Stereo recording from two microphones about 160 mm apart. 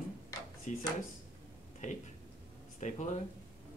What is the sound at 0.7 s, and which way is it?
Speech, 50° left (ahead or behind).